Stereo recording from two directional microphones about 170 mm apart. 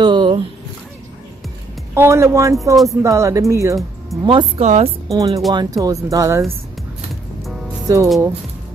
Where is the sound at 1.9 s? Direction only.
15° right (ahead or behind).